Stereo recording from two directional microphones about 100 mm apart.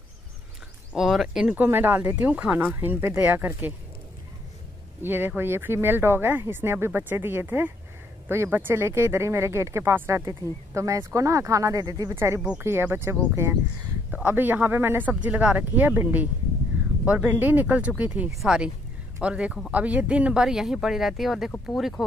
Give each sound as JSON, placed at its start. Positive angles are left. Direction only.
{"t": 0.9, "sound": "speech", "side_deg": 0}
{"t": 1.5, "sound": "speech", "side_deg": -20}
{"t": 5.0, "sound": "speech", "side_deg": -20}
{"t": 12.5, "sound": "speech", "side_deg": -25}